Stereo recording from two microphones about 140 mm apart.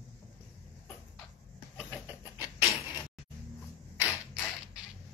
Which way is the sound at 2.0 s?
10° right (ahead or behind).